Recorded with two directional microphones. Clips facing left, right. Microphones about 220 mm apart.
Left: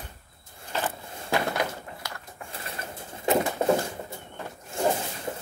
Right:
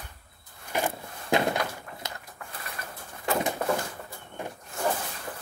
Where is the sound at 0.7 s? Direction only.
15° right (ahead or behind).